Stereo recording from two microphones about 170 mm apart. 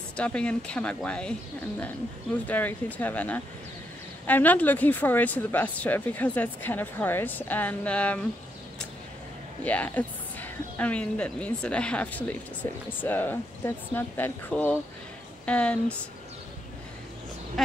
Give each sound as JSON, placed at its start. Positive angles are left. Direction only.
{"t": 0.2, "sound": "speech", "side_deg": 5}
{"t": 2.4, "sound": "speech", "side_deg": 10}
{"t": 9.7, "sound": "speech", "side_deg": 10}